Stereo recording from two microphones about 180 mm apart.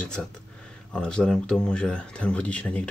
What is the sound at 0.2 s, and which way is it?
Speech, centre (ahead or behind).